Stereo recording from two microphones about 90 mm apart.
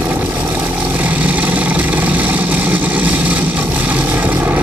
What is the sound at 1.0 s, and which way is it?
Vehicle, 15° right (ahead or behind).